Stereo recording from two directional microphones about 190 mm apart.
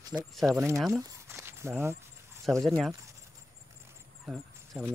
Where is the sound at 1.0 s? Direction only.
15° right (ahead or behind).